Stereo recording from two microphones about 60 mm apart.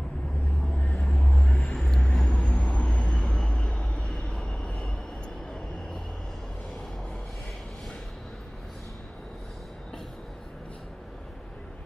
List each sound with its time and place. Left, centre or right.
0.7 s vehicle: centre
2.0 s vehicle: centre
2.3 s vehicle: centre
3.1 s vehicle: centre